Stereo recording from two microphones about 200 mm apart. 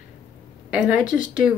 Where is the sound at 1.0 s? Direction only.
40° left (ahead or behind).